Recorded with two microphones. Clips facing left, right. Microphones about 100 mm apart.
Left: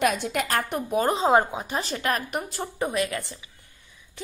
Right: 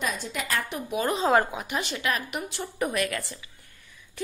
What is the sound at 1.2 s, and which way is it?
A woman's voice, 20° left (ahead or behind).